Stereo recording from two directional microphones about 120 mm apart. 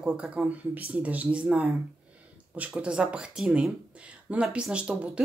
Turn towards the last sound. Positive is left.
turn(degrees=-10)  # may be behind; listen again after turning